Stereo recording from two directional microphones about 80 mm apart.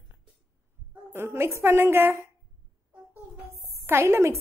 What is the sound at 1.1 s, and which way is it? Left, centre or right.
A woman's voice, right.